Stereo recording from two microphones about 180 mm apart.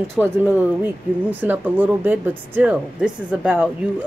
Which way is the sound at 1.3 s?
10° right (ahead or behind).